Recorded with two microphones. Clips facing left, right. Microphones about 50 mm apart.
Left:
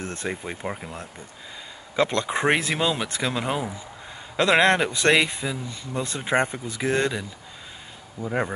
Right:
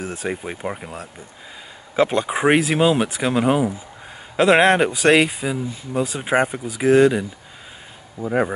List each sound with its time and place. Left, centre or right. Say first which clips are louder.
0.0 s speech: right 4 dB; centre
4.4 s speech: right 5 dB; centre
8.2 s speech: right 6 dB; centre